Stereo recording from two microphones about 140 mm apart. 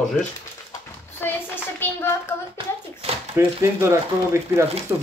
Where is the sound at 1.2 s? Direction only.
15° left (ahead or behind).